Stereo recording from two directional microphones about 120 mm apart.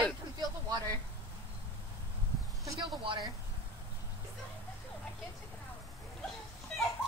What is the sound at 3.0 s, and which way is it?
Speech, 40° right (ahead or behind).